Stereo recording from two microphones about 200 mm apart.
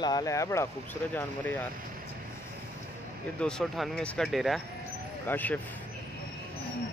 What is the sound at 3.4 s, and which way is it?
Speech, 5° left (ahead or behind).